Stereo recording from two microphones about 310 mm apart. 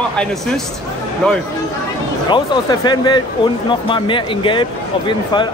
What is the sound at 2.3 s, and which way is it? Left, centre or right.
Speech, centre.